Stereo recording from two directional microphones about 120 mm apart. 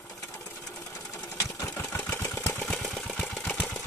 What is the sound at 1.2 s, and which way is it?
Sewing machine, 30° left (ahead or behind).